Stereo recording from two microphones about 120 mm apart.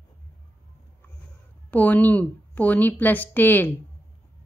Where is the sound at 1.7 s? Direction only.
15° left (ahead or behind).